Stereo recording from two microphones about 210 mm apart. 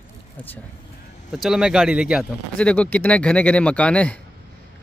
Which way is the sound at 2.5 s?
5° left (ahead or behind).